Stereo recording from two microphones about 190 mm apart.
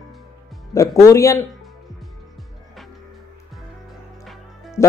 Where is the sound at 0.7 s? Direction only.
15° left (ahead or behind).